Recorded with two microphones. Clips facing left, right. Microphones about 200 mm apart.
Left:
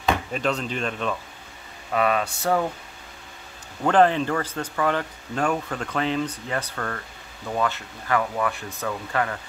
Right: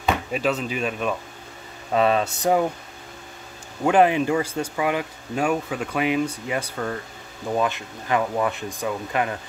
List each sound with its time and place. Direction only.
0.0 s speech: 5° right (ahead or behind)
1.9 s a sound: 30° right (ahead or behind)
3.8 s speech: 10° right (ahead or behind)